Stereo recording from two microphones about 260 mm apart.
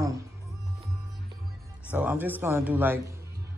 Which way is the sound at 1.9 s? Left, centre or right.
Centre.